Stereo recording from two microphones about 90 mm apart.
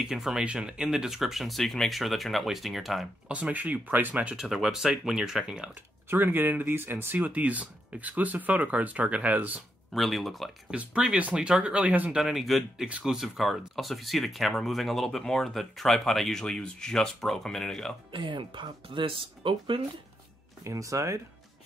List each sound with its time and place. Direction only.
0.0 s speech: 5° right (ahead or behind)
3.3 s speech: 15° right (ahead or behind)
4.4 s speech: 5° right (ahead or behind)
6.0 s speech: 25° right (ahead or behind)
9.9 s speech: centre (ahead or behind)
10.7 s speech: 10° right (ahead or behind)
12.2 s speech: 5° right (ahead or behind)
18.1 s speech: 65° right (ahead or behind); by 19.8 s 80° right
20.6 s speech: 35° right (ahead or behind)